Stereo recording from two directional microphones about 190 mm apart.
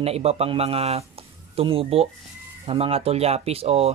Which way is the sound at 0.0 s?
35° right (ahead or behind).